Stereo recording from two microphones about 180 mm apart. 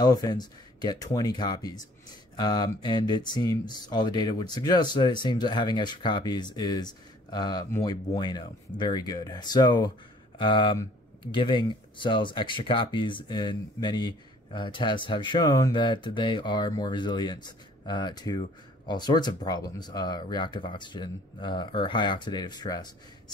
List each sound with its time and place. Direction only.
0.0 s speech: 20° left (ahead or behind)